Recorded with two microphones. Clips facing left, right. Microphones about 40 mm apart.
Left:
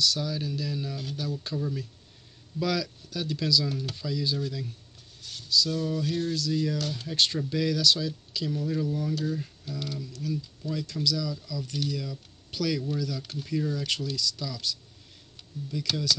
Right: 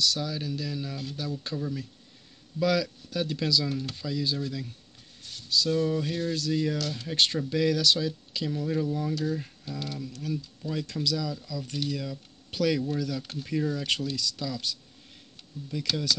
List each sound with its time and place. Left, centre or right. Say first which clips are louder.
0.2 s speech: left 1 dB; centre
3.1 s speech: left 1 dB; right
5.2 s speech: left 1 dB; right
7.3 s speech: right 2 dB; centre; by 15.9 s right